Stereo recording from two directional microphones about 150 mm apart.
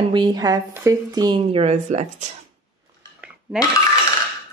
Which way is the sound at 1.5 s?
45° right (ahead or behind).